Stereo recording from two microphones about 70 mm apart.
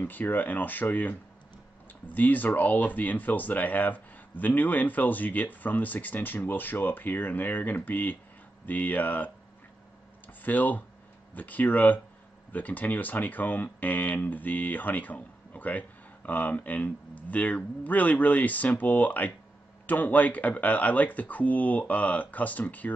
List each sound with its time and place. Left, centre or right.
0.0 s speech: left
10.2 s a sound: left
11.3 s speech: left